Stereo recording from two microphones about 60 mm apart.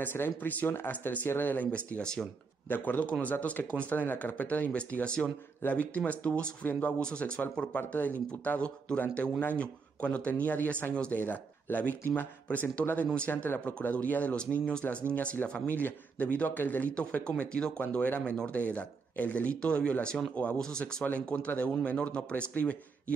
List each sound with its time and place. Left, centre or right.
0.0 s speech: left; by 2.2 s centre
2.7 s speech: left
5.6 s speech: left
7.0 s speech: centre
7.7 s a man's voice: left
16.9 s speech: left
21.0 s speech: left